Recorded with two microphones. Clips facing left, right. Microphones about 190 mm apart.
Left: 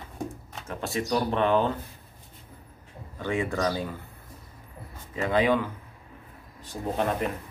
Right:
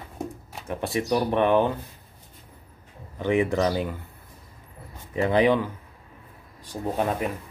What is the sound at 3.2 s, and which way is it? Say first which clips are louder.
Speech: right 5 dB; 20° right (ahead or behind).